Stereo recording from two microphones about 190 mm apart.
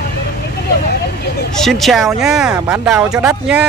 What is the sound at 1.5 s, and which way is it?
Speech, centre (ahead or behind).